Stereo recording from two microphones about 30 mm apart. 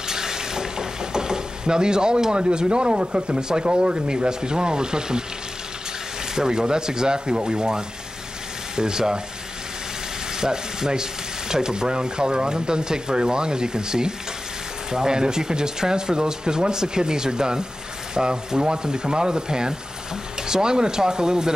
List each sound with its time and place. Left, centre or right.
0.1 s speech: centre
6.3 s rub: right
10.4 s rub: right